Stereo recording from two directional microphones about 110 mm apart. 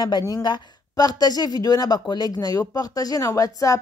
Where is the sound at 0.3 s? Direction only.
40° left (ahead or behind).